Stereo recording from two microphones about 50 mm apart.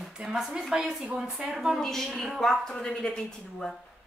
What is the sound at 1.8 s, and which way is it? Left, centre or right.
Speech, centre.